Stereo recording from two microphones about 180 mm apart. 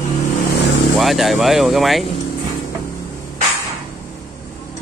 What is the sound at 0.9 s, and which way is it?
Speech, centre (ahead or behind).